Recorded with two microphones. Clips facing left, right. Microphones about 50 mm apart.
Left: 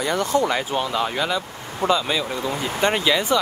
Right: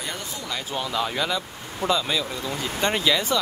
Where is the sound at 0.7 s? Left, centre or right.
Centre.